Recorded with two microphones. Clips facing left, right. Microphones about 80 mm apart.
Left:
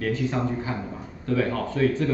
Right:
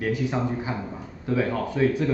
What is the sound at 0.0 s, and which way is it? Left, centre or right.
Speech, centre.